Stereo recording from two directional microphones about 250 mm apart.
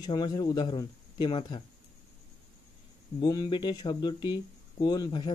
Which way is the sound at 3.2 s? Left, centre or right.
Centre.